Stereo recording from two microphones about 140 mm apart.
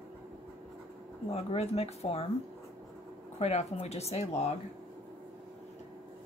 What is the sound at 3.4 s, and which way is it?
Speech, 50° left (ahead or behind).